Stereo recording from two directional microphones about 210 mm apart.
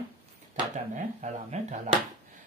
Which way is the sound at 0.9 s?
35° right (ahead or behind).